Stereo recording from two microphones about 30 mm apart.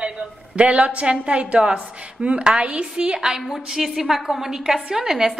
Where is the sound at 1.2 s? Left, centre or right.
Right.